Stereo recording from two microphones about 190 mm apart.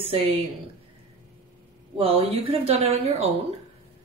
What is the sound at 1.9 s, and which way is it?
A woman's voice, 30° right (ahead or behind).